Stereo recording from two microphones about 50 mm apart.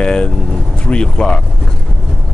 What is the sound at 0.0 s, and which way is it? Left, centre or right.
Speech, centre.